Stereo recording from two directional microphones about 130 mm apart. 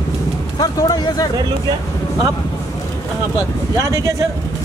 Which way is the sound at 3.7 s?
25° right (ahead or behind).